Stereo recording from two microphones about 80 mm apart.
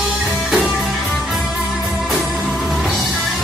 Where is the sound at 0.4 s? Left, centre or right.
Centre.